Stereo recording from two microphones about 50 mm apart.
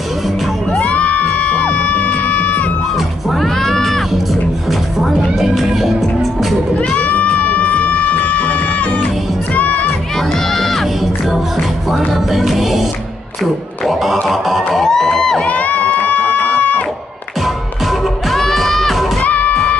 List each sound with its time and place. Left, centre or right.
0.7 s music: left
3.0 s music: centre
6.8 s music: left
10.1 s music: centre
13.4 s a sound: centre
14.8 s a sound: centre
15.4 s a sound: left
18.3 s music: centre
19.2 s music: left